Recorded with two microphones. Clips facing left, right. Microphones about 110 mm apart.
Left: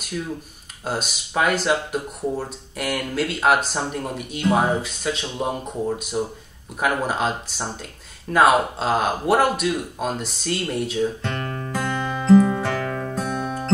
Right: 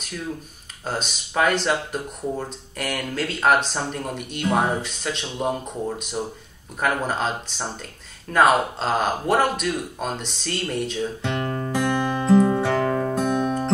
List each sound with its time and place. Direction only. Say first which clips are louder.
0.8 s speech: left 1 dB; 5° left (ahead or behind)
11.2 s music: right 3 dB; 15° right (ahead or behind)